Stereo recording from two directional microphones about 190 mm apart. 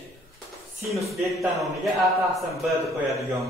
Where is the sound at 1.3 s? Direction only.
Centre (ahead or behind).